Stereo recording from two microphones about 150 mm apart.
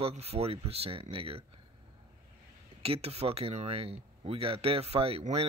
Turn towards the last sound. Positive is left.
turn(degrees=-40)  # may be behind; listen again after turning